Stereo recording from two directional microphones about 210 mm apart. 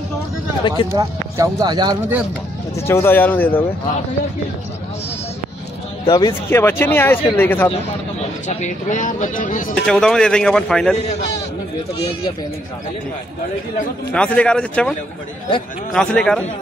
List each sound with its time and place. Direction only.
0.9 s speech: 20° right (ahead or behind)
2.9 s speech: 10° left (ahead or behind)
6.0 s speech: 20° left (ahead or behind)
8.2 s speech: 35° left (ahead or behind)
9.8 s a man's voice: 5° left (ahead or behind)
14.1 s a man's voice: 5° left (ahead or behind)